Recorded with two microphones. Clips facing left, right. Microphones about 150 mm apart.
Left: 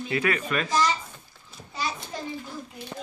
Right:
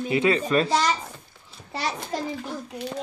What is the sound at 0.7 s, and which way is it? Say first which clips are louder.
A child's voice: right 2 dB; 70° right (ahead or behind).